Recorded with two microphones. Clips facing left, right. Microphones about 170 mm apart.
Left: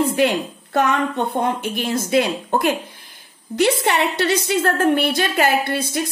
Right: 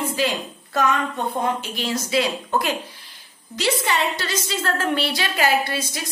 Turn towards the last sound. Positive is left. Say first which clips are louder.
# left 5 dB
turn(degrees=55)  # may be behind; listen again after turning